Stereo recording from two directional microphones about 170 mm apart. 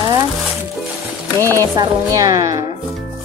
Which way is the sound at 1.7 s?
20° right (ahead or behind).